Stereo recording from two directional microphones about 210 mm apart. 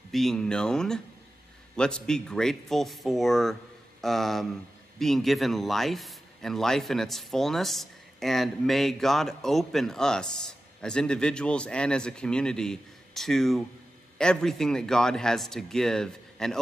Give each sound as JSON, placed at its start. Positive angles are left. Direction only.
{"t": 0.1, "sound": "speech", "side_deg": 0}